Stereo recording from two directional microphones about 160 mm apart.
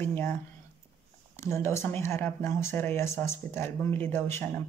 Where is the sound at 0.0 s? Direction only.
15° left (ahead or behind).